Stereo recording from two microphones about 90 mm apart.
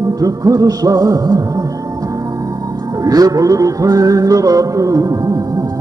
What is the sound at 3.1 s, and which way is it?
Music, 45° right (ahead or behind).